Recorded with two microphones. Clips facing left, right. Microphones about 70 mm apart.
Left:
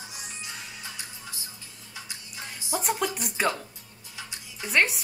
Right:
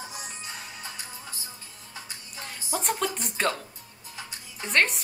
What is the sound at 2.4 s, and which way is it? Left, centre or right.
Music, centre.